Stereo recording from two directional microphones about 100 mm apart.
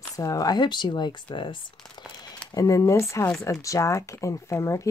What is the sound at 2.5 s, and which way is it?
Speech, 35° left (ahead or behind).